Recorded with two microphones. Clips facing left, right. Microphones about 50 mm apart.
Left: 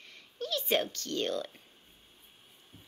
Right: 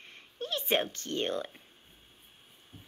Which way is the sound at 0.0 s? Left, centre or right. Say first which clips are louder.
Even; right.